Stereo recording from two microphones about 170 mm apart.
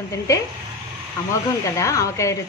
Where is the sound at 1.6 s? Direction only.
20° left (ahead or behind).